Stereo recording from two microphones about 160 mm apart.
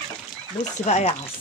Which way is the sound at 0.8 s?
45° left (ahead or behind).